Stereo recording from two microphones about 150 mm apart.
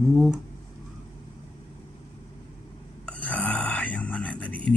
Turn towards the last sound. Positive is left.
turn(degrees=10)  # may be behind; listen again after turning